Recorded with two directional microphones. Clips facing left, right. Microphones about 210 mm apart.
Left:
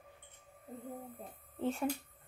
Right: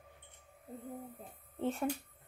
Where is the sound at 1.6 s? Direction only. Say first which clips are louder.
Even; centre (ahead or behind).